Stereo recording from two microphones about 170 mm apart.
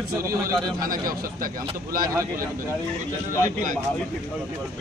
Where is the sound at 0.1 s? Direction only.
15° right (ahead or behind).